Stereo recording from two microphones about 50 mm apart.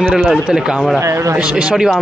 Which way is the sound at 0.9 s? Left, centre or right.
Right.